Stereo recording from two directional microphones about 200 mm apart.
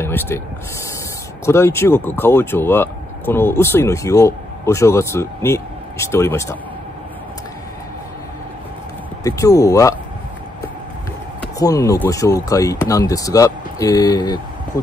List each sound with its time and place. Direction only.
0.0 s speech: 10° left (ahead or behind)
1.4 s speech: 15° left (ahead or behind)
9.2 s speech: 15° left (ahead or behind)
11.5 s speech: 15° left (ahead or behind)